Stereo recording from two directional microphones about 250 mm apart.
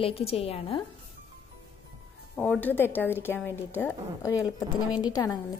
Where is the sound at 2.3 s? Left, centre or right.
Centre.